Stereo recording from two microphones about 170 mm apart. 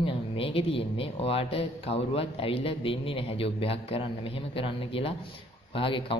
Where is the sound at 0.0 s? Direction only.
30° left (ahead or behind).